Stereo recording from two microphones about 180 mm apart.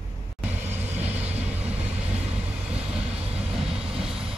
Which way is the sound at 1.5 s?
5° right (ahead or behind).